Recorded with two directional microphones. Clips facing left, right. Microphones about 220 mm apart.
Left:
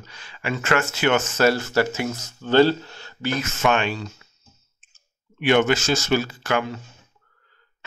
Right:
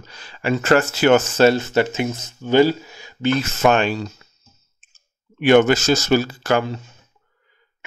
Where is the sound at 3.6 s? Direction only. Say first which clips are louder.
Right 3 dB; 40° right (ahead or behind).